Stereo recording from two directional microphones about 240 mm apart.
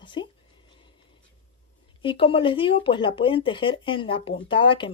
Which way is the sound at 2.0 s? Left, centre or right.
Left.